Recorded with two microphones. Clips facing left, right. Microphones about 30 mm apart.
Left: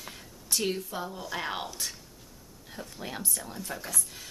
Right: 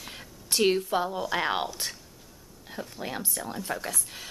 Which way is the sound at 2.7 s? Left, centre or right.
Centre.